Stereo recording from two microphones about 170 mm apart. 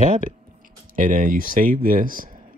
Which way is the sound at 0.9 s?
50° right (ahead or behind).